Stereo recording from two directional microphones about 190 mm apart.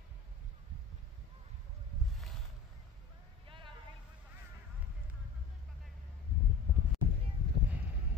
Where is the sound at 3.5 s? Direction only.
25° right (ahead or behind).